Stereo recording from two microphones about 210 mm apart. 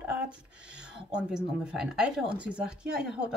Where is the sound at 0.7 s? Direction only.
5° right (ahead or behind).